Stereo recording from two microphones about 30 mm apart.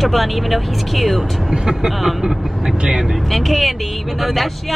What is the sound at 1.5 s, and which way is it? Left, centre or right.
Speech, centre.